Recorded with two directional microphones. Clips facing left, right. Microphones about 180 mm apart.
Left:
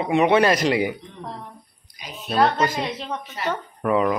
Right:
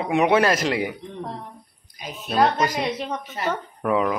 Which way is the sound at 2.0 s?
50° right (ahead or behind).